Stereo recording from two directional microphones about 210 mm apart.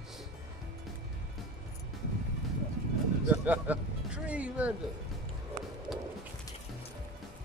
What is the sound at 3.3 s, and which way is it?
Speech, 10° right (ahead or behind).